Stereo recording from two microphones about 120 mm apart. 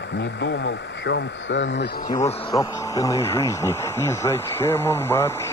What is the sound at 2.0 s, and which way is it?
Speech, 25° left (ahead or behind).